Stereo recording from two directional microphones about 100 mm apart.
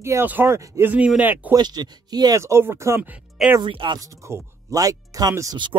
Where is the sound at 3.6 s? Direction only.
55° right (ahead or behind).